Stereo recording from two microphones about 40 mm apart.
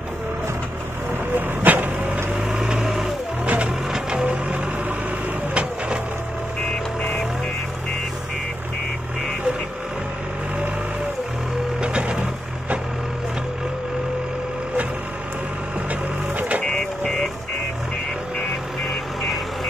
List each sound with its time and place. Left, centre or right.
1.3 s vehicle: right
2.4 s vehicle: right
2.8 s vehicle: centre
3.4 s music: right
5.5 s vehicle: right
11.8 s vehicle: right
15.9 s printer: right
16.6 s vehicle: centre